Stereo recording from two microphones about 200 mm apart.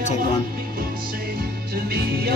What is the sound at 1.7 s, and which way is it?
Music, 50° right (ahead or behind).